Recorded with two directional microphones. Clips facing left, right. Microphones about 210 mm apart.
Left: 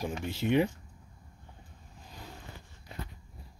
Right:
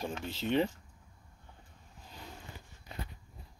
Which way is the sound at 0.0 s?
15° left (ahead or behind).